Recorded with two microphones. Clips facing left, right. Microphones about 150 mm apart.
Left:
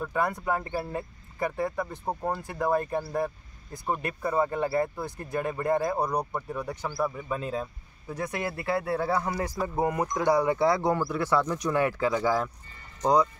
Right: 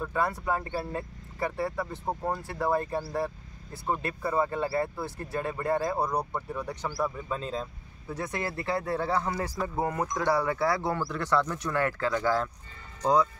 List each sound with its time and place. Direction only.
0.0 s speech: 15° left (ahead or behind)